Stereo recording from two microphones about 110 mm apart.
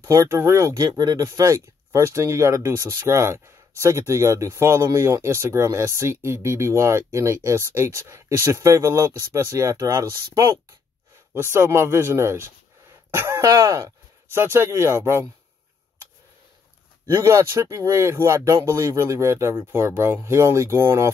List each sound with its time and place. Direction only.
0.0 s speech: 25° right (ahead or behind); by 1.2 s 40° right (ahead or behind)
1.2 s speech: 30° right (ahead or behind)
17.1 s speech: 25° right (ahead or behind)